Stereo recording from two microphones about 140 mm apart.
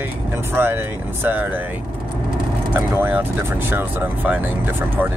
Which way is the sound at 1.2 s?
15° right (ahead or behind).